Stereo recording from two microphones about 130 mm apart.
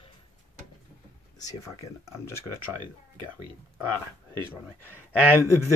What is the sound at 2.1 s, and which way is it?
Speech, 20° left (ahead or behind).